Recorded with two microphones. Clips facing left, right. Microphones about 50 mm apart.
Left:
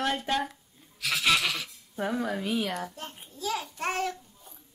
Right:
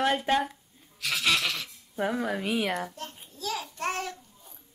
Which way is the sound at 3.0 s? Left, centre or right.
Centre.